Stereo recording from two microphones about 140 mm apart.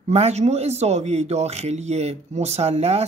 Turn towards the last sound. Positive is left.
turn(degrees=-50)  # may be behind; listen again after turning